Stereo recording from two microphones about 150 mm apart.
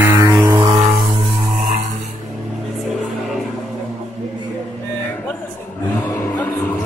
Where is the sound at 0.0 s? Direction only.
20° right (ahead or behind).